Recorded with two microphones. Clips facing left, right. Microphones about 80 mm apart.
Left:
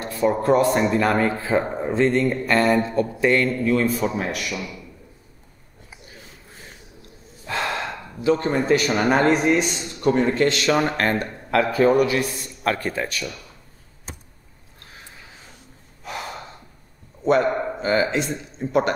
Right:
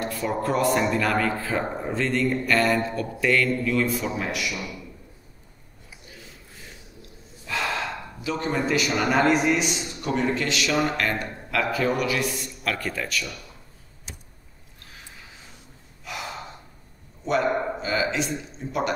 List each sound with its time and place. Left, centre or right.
0.0 s speech: left
7.4 s speech: left
14.1 s a sound: left
16.0 s gasp: left
17.2 s speech: left